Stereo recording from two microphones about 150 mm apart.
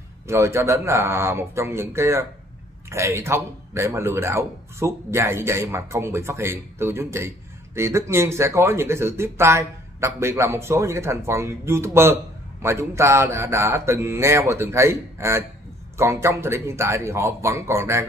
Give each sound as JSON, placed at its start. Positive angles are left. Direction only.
{"t": 0.3, "sound": "speech", "side_deg": -20}